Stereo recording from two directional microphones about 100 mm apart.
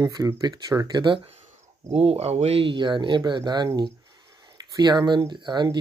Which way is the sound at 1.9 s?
90° right.